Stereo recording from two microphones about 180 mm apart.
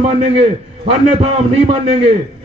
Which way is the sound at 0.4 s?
30° right (ahead or behind).